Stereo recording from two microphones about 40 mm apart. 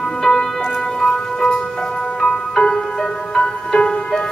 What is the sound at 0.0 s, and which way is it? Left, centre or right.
Music, centre.